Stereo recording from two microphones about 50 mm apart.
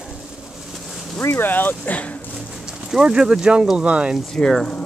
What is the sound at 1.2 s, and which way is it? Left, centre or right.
Speech, left.